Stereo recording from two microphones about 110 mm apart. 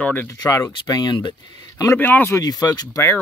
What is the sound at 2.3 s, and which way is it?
Speech, 35° left (ahead or behind).